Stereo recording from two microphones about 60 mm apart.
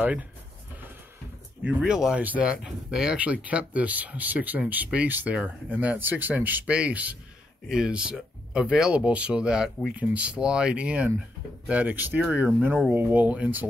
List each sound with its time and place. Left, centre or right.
0.0 s speech: right
1.8 s speech: centre
2.1 s speech: right
3.2 s speech: right
6.6 s speech: centre
7.6 s speech: centre; by 13.7 s right